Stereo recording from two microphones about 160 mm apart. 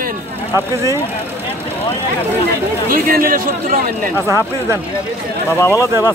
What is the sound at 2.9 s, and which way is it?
Speech, 65° right (ahead or behind).